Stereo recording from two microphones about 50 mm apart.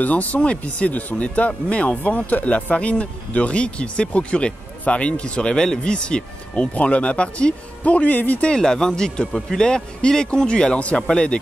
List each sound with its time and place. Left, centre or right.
0.0 s speech: left
8.5 s speech: centre